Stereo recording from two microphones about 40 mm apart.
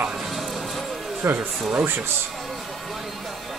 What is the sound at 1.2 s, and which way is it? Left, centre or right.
Speech, right.